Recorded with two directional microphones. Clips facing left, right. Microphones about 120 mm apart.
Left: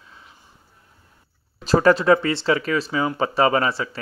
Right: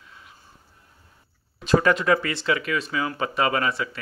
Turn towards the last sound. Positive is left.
turn(degrees=30)  # may be behind; listen again after turning